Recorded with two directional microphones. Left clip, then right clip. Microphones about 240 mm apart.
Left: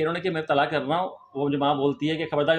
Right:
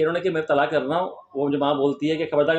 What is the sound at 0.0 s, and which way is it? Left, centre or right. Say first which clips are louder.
Speech: right 4 dB; left.